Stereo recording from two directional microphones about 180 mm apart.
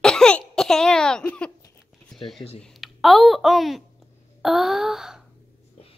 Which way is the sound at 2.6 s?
Centre (ahead or behind).